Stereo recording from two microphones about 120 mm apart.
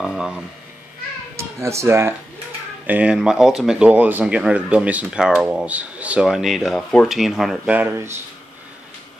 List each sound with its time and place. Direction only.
0.0 s speech: 5° right (ahead or behind)
1.3 s speech: 25° right (ahead or behind)
2.9 s speech: 10° right (ahead or behind)
7.7 s speech: 15° right (ahead or behind)